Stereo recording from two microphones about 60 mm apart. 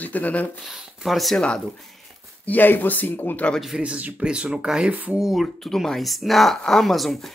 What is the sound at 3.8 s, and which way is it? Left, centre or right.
Speech, right.